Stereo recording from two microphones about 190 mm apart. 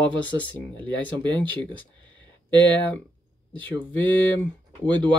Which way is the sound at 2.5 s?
10° left (ahead or behind).